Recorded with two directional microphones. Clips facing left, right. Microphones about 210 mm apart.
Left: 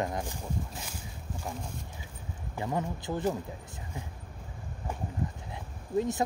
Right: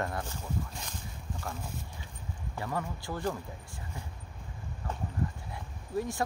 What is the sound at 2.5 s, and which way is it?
Speech, 20° left (ahead or behind).